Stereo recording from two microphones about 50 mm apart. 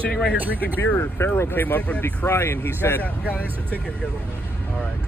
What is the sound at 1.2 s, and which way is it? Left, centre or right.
Speech, left.